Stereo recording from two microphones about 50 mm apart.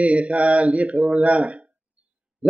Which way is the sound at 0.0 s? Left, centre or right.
Right.